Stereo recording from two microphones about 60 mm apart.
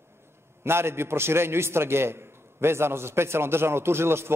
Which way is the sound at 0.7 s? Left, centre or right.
Right.